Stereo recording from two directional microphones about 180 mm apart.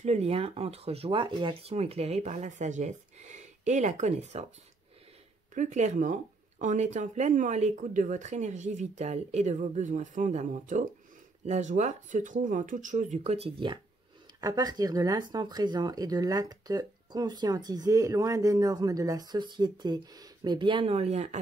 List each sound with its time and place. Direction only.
0.0 s speech: 35° right (ahead or behind)
5.5 s speech: 45° right (ahead or behind)